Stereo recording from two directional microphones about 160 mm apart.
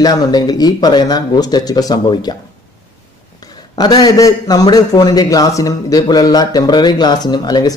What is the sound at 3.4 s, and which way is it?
A man's voice, 25° left (ahead or behind).